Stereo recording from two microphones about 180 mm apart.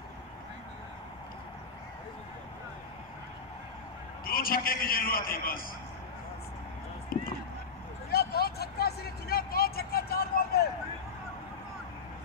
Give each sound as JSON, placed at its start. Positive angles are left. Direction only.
{"t": 4.2, "sound": "a man's voice", "side_deg": 55}
{"t": 7.1, "sound": "a sound", "side_deg": 55}
{"t": 8.1, "sound": "vehicle", "side_deg": 60}